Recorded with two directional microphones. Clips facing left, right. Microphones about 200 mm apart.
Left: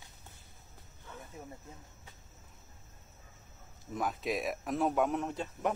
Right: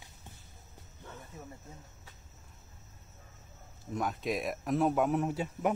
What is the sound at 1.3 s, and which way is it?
Insect, 15° left (ahead or behind).